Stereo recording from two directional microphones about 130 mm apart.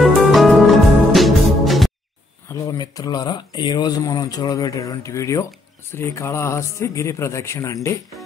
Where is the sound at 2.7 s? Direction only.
30° left (ahead or behind).